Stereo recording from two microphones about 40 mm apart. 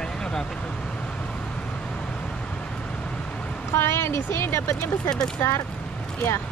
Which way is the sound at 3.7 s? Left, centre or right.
Left.